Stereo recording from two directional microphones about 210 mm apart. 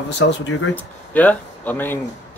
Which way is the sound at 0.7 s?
5° left (ahead or behind).